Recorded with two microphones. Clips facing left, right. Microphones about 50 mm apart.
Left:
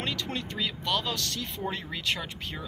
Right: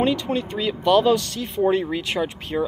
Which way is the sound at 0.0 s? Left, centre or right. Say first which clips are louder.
Right 11 dB; centre.